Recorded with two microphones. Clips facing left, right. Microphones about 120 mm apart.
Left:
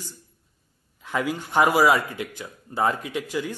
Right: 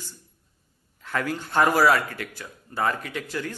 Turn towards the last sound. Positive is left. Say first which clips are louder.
# left 3 dB
turn(degrees=15)  # may be behind; listen again after turning